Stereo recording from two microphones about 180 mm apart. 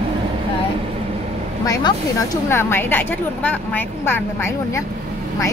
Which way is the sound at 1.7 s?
20° left (ahead or behind).